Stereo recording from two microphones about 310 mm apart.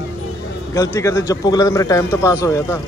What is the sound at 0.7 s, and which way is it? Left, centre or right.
Speech, centre.